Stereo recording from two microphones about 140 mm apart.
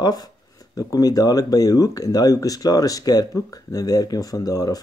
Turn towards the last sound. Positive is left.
turn(degrees=25)  # may be behind; listen again after turning